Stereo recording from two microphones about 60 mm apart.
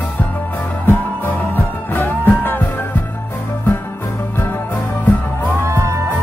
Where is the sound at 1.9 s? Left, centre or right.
Left.